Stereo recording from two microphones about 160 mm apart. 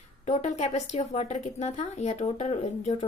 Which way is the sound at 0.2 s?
45° left (ahead or behind).